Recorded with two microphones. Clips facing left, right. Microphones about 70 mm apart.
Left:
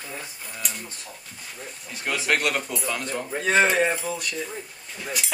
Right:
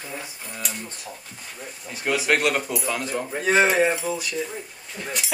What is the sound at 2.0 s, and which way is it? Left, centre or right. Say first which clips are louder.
Speech: right 3 dB; centre.